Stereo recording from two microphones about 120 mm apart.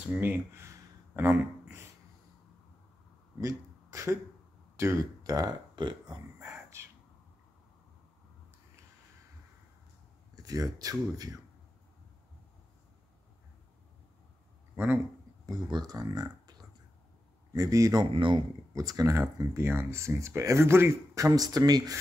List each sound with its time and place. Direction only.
0.1 s a sound: 15° right (ahead or behind)
3.3 s a sound: 25° right (ahead or behind)
4.7 s speech: 25° right (ahead or behind)
6.4 s a sound: 25° right (ahead or behind)
10.3 s speech: 30° right (ahead or behind)
15.4 s speech: 30° right (ahead or behind)
17.6 s speech: 25° right (ahead or behind)
18.1 s speech: 45° right (ahead or behind)
18.8 s speech: 30° right (ahead or behind)